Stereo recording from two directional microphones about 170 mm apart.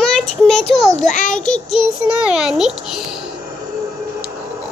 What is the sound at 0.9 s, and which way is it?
Child singing, 45° left (ahead or behind).